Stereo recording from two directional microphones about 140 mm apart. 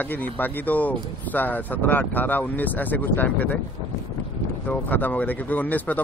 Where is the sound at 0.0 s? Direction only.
10° left (ahead or behind).